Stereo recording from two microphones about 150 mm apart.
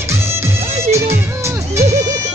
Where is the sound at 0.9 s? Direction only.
20° right (ahead or behind).